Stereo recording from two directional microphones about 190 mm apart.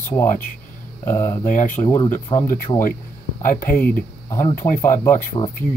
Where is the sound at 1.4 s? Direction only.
45° left (ahead or behind).